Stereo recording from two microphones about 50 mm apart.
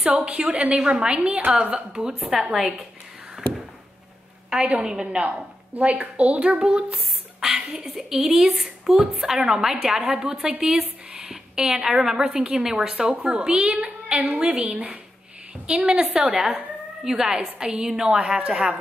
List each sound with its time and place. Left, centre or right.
0.0 s a woman's voice: right
2.0 s a woman's voice: centre
4.5 s a woman's voice: right
6.6 s a woman's voice: centre